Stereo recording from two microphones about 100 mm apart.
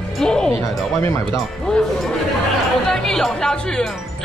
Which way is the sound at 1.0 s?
25° left (ahead or behind).